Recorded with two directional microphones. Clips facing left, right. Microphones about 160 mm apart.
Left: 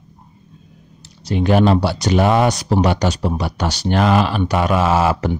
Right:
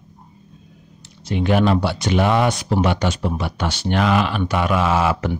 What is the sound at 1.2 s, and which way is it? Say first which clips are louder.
Speech: left 3 dB; 35° left (ahead or behind).